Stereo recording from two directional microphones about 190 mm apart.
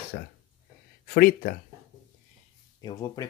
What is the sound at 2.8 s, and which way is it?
Speech, 20° left (ahead or behind).